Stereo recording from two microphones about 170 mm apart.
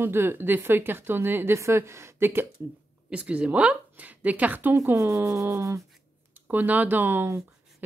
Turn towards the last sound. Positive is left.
turn(degrees=-10)  # may be behind; listen again after turning